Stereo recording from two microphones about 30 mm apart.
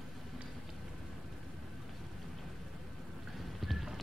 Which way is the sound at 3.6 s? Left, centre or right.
Centre.